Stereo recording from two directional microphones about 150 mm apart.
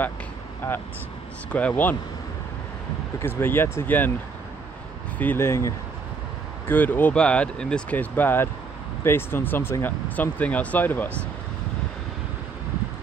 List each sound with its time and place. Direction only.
0.6 s speech: 15° left (ahead or behind)
3.2 s speech: 15° left (ahead or behind)
5.2 s speech: 15° left (ahead or behind)